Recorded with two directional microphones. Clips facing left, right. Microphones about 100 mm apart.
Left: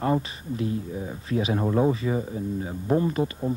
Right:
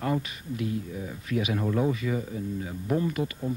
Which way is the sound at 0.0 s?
30° left (ahead or behind).